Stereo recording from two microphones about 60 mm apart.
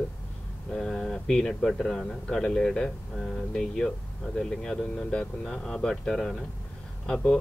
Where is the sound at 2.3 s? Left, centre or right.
Centre.